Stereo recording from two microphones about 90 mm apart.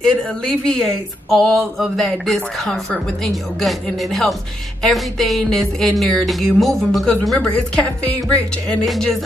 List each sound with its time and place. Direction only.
0.0 s a woman's voice: 10° left (ahead or behind)